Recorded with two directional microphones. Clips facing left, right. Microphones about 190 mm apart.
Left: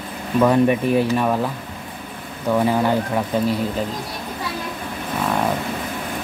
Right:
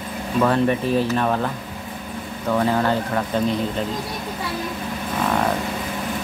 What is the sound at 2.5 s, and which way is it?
Speech, 10° left (ahead or behind).